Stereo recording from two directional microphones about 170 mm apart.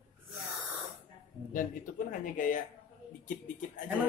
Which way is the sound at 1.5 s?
55° left (ahead or behind).